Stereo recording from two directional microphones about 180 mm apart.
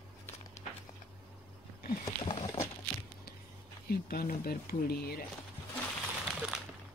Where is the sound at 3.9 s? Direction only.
55° left (ahead or behind).